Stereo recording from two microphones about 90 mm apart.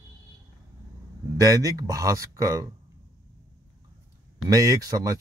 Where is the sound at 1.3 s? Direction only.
40° right (ahead or behind).